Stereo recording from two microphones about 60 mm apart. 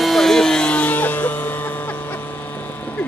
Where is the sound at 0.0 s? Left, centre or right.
Centre.